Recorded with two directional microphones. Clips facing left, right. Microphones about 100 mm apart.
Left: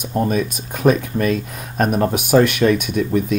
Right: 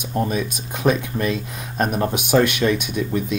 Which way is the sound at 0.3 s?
45° left (ahead or behind).